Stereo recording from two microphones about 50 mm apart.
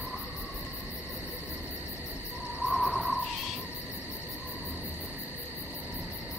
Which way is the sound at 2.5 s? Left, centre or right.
Centre.